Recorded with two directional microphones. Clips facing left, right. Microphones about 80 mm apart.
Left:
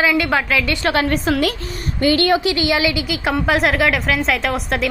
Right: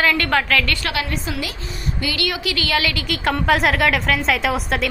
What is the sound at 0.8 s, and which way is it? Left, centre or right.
Speech, left.